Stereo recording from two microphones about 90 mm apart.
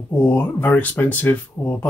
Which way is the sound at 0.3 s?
20° left (ahead or behind).